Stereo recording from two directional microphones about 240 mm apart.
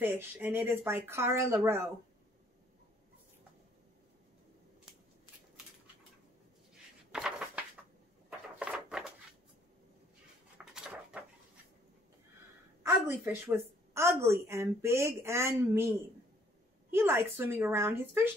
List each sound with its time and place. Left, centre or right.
0.0 s a woman's voice: centre
7.1 s a sound: centre
10.6 s dog: centre
12.8 s a woman's voice: centre
16.9 s a woman's voice: centre